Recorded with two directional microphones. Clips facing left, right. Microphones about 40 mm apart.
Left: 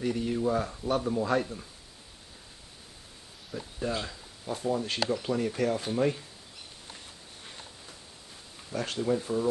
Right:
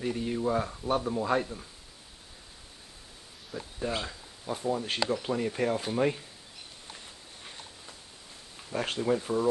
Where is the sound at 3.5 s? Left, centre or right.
Centre.